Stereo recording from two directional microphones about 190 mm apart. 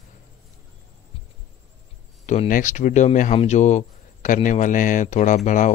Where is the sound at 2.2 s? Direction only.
40° left (ahead or behind).